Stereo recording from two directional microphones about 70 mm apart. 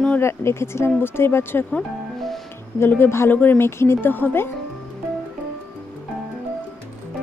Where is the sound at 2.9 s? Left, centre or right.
Left.